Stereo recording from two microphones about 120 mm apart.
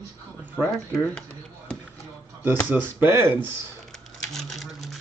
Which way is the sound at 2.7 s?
15° right (ahead or behind).